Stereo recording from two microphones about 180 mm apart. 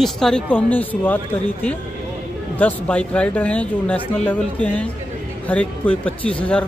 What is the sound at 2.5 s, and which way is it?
Speech, 10° left (ahead or behind).